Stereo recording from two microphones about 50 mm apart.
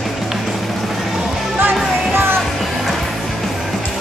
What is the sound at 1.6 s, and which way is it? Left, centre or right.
Music, right.